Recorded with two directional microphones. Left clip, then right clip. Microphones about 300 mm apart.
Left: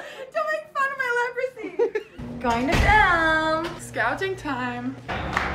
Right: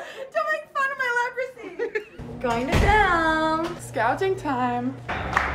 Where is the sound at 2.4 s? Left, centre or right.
Centre; by 4.8 s right.